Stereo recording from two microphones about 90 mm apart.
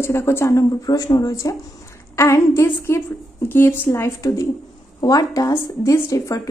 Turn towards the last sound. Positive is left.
turn(degrees=35)  # may be behind; listen again after turning